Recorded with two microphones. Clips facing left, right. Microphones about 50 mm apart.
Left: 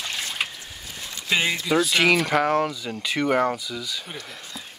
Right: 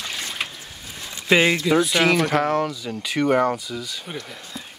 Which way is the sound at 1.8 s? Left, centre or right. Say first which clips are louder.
Right 1 dB; centre.